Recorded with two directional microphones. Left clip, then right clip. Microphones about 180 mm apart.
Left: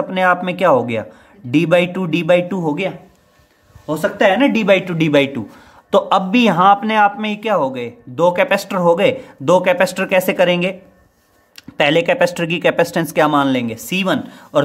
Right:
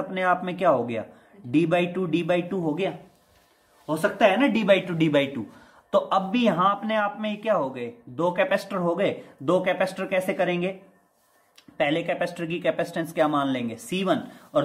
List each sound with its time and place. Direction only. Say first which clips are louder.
0.1 s a man's voice: left 8 dB; 50° left (ahead or behind)